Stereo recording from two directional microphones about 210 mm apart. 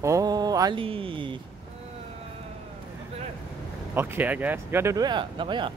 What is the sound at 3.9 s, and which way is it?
Speech, 10° right (ahead or behind).